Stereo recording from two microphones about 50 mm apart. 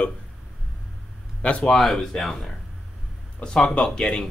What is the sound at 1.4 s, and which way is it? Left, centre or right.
Speech, left.